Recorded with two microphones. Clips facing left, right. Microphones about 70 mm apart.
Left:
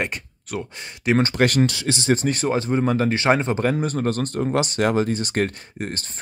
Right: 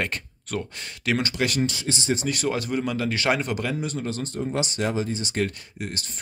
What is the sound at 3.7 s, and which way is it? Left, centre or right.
Speech, left.